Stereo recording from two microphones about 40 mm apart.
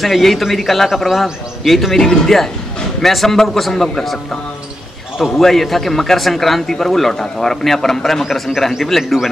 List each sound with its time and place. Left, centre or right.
0.0 s a man's voice: centre
2.0 s a man's voice: centre
5.2 s a man's voice: centre